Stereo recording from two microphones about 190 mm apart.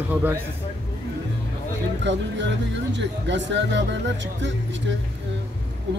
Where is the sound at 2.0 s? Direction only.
70° right (ahead or behind).